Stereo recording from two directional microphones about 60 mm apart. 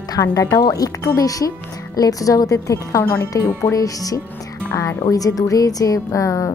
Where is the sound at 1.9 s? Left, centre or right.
Left.